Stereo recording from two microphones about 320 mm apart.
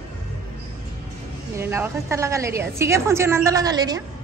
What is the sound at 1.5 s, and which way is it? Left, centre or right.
A woman's voice, centre.